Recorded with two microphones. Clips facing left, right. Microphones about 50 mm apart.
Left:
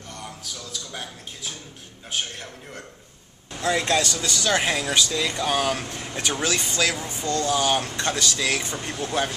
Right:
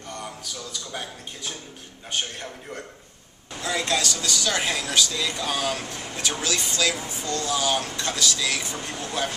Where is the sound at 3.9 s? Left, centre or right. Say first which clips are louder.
Left 2 dB; left.